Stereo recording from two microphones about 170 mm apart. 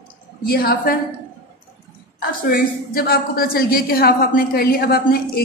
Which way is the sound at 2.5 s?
60° left (ahead or behind).